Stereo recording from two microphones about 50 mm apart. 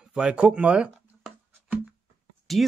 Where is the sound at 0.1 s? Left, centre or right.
Centre.